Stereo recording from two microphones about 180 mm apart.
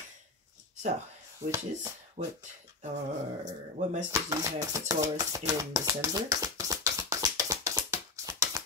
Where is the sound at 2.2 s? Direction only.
50° right (ahead or behind).